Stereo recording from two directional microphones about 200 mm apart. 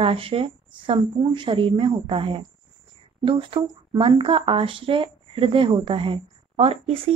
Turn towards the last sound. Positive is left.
turn(degrees=-25)  # may be behind; listen again after turning